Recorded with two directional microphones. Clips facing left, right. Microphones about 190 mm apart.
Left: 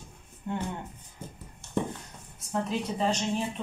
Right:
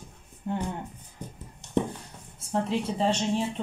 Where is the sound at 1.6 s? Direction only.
20° right (ahead or behind).